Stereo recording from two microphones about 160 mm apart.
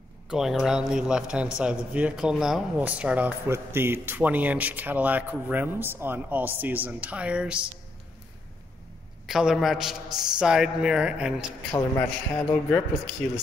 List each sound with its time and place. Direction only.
0.3 s a man's voice: centre (ahead or behind)
9.2 s a woman's voice: 5° right (ahead or behind)
11.7 s a man's voice: 20° left (ahead or behind)